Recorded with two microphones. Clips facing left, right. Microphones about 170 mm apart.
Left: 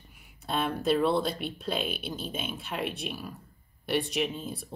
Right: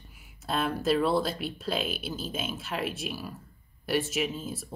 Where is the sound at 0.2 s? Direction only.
5° right (ahead or behind).